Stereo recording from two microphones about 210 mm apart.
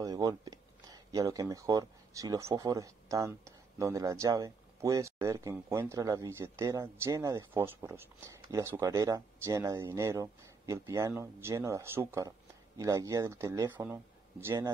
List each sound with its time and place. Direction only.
0.0 s speech: 15° right (ahead or behind)